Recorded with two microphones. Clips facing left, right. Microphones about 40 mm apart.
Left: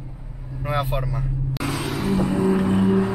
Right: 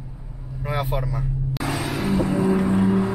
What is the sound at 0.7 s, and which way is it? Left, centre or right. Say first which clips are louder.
Vehicle: left 1 dB; centre.